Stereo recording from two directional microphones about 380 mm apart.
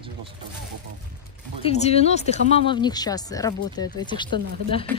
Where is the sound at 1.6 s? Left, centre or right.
Centre.